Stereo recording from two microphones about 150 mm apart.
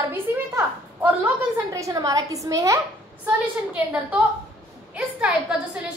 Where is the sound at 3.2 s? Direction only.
10° right (ahead or behind).